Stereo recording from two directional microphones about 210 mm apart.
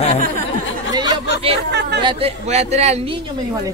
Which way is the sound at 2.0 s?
25° right (ahead or behind).